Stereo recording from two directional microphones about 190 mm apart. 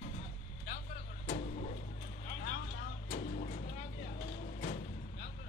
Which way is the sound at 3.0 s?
55° left (ahead or behind).